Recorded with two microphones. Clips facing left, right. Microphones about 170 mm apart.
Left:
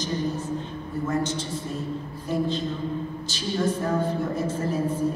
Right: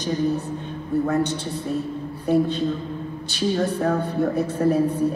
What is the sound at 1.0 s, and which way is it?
Speech, 65° right (ahead or behind).